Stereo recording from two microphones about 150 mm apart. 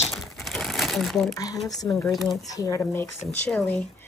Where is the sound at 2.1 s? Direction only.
Centre (ahead or behind).